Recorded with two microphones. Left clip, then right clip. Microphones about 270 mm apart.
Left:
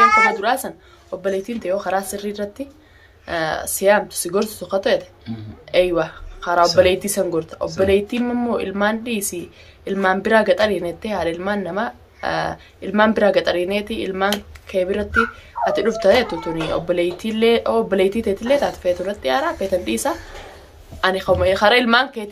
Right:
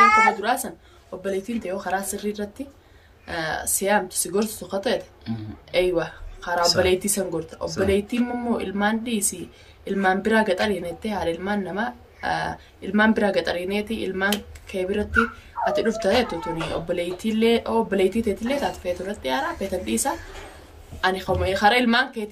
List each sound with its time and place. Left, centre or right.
0.0 s babbling: left
0.4 s a woman's voice: centre